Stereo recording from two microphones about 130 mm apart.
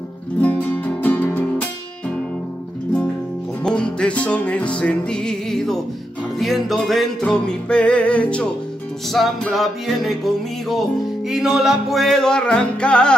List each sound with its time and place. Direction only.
0.4 s music: 10° left (ahead or behind)
3.6 s music: 5° left (ahead or behind)